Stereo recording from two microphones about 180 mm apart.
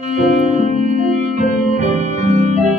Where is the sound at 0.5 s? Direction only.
40° right (ahead or behind).